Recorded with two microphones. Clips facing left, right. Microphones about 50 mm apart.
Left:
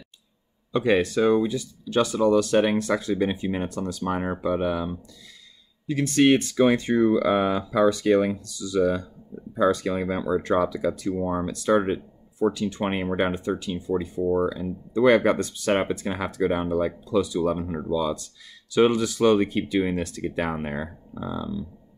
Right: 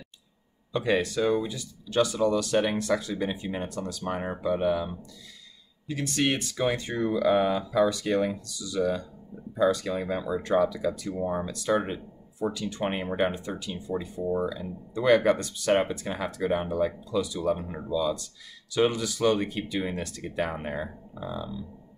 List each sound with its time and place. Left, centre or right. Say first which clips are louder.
0.7 s speech: left 4 dB; left
5.9 s speech: left 8 dB; left